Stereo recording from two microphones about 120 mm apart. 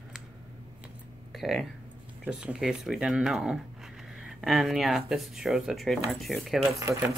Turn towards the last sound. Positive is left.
turn(degrees=-25)  # may be behind; listen again after turning